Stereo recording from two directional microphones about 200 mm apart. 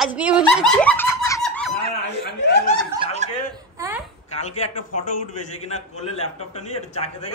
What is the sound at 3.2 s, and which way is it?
Chuckle, 35° right (ahead or behind).